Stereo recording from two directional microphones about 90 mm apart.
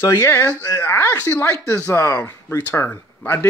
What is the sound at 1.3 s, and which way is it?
Speech, 30° left (ahead or behind).